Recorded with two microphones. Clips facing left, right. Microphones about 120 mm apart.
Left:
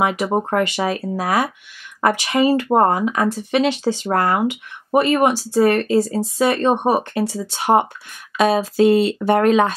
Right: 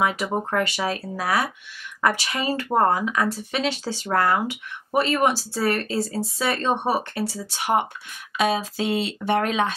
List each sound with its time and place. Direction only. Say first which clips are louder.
0.0 s speech: left 5 dB; 25° left (ahead or behind)
7.5 s speech: left 6 dB; 35° left (ahead or behind)
8.4 s speech: left 8 dB; 45° left (ahead or behind)